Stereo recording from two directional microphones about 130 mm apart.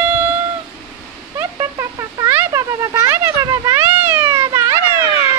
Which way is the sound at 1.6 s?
25° right (ahead or behind).